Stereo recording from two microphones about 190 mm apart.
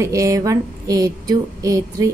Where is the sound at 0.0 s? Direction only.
15° right (ahead or behind).